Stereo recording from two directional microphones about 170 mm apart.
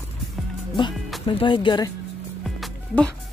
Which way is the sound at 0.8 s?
30° left (ahead or behind).